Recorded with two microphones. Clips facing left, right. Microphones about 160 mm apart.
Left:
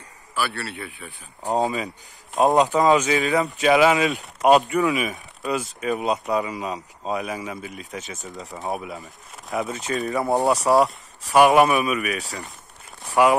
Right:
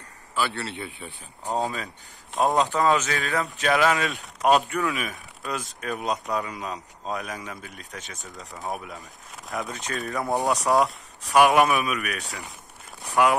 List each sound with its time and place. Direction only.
0.3 s speech: 20° right (ahead or behind)
1.4 s speech: 15° left (ahead or behind)
2.3 s speech: centre (ahead or behind)
10.2 s speech: 20° left (ahead or behind)
10.5 s speech: centre (ahead or behind)
13.0 s a sound: centre (ahead or behind)